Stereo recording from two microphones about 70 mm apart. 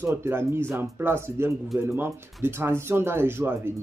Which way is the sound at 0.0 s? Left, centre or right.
Right.